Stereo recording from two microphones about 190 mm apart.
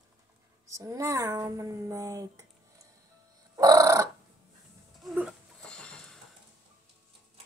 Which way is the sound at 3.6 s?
20° right (ahead or behind).